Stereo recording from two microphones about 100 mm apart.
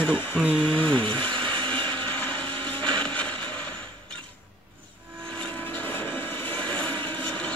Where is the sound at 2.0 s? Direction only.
20° left (ahead or behind).